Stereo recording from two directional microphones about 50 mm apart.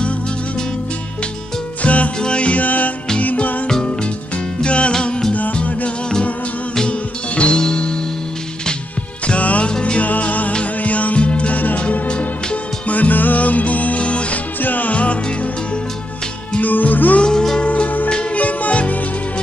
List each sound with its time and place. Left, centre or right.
1.8 s music: left
3.6 s music: centre; by 5.9 s left
6.9 s music: left
9.3 s music: left
10.0 s music: left
16.5 s music: left
17.2 s music: centre
17.6 s music: left